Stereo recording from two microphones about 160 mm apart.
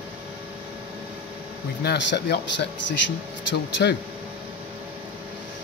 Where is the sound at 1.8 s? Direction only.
90° left.